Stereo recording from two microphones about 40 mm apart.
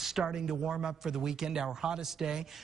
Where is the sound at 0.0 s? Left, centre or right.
Centre.